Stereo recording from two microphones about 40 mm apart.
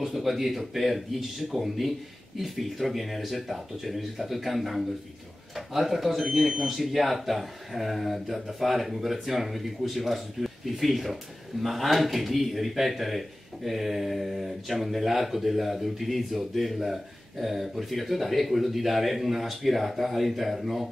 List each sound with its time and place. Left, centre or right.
0.0 s speech: centre